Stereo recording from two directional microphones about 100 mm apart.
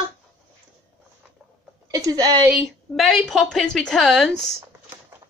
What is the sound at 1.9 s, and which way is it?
Speech, 40° right (ahead or behind).